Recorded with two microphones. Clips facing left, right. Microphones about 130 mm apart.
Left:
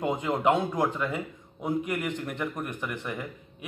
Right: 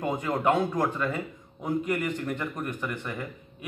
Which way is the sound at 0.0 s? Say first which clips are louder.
Left 1 dB; 15° left (ahead or behind).